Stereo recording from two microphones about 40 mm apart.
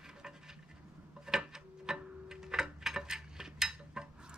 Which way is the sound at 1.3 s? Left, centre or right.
Centre.